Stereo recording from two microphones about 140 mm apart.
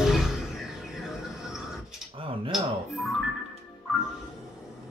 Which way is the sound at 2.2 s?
40° right (ahead or behind).